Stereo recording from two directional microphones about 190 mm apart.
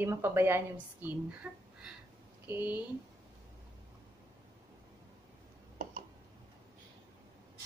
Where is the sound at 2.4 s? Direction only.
10° right (ahead or behind).